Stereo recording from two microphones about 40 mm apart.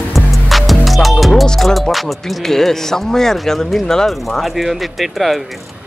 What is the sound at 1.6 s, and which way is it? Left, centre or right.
Speech, centre.